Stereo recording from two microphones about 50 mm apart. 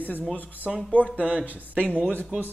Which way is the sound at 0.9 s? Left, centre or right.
Left.